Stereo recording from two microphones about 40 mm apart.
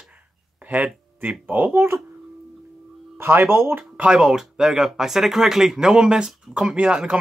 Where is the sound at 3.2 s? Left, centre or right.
Right.